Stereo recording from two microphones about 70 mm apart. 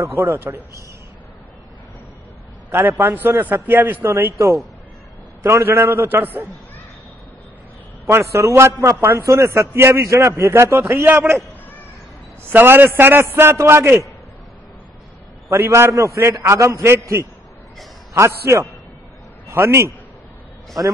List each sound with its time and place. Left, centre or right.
0.0 s a man's voice: right
2.7 s a man's voice: right
4.3 s a man's voice: right
8.1 s a man's voice: right
12.4 s a man's voice: right
15.5 s a man's voice: right